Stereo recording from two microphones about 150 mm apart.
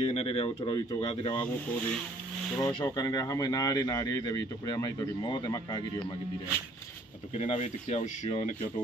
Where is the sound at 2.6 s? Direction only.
25° left (ahead or behind).